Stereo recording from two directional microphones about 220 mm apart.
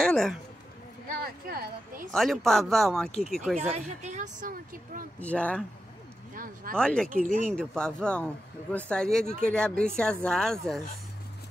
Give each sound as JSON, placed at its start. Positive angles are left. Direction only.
{"t": 0.1, "sound": "a man's voice", "side_deg": 0}
{"t": 1.5, "sound": "speech", "side_deg": -45}
{"t": 2.0, "sound": "speech", "side_deg": 0}
{"t": 3.5, "sound": "a woman's voice", "side_deg": -30}
{"t": 5.2, "sound": "speech", "side_deg": 5}
{"t": 6.3, "sound": "a woman's voice", "side_deg": -40}
{"t": 6.7, "sound": "speech", "side_deg": 5}
{"t": 7.1, "sound": "a woman's voice", "side_deg": -40}
{"t": 7.5, "sound": "speech", "side_deg": 5}
{"t": 9.2, "sound": "a woman's voice", "side_deg": -40}
{"t": 9.5, "sound": "speech", "side_deg": 5}